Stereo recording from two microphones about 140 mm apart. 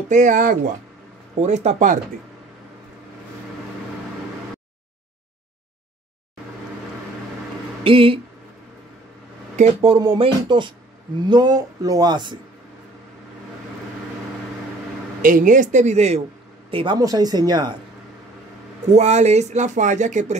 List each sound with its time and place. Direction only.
0.1 s speech: 65° right (ahead or behind)
1.4 s speech: 55° right (ahead or behind)
7.8 s speech: 40° right (ahead or behind)
9.6 s speech: 45° right (ahead or behind)
15.2 s speech: 70° right (ahead or behind); by 16.2 s 55° right (ahead or behind)
16.7 s speech: 35° right (ahead or behind)
18.9 s speech: 55° right (ahead or behind)